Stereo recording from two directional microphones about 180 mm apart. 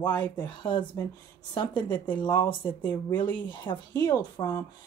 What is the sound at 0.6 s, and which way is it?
Speech, 25° left (ahead or behind).